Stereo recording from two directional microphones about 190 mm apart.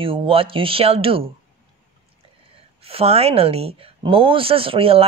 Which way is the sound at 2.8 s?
30° right (ahead or behind).